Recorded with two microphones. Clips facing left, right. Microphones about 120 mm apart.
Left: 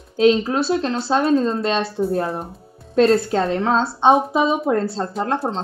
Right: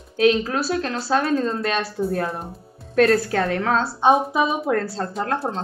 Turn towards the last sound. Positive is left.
turn(degrees=25)  # may be behind; listen again after turning